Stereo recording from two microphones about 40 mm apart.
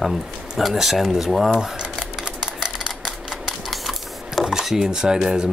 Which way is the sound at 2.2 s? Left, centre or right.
Centre.